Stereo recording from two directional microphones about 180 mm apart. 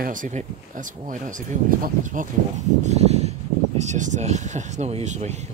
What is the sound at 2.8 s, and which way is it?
Speech, 40° right (ahead or behind).